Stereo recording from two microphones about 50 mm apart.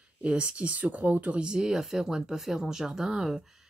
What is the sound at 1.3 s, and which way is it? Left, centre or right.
Speech, centre.